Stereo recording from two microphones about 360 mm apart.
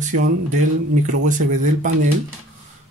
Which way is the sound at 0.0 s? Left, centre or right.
Right.